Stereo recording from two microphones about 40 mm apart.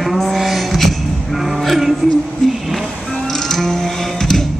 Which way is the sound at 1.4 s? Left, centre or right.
Centre.